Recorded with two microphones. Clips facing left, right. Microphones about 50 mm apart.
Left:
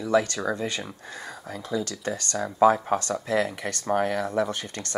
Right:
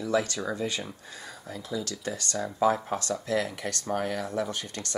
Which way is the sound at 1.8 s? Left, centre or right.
Left.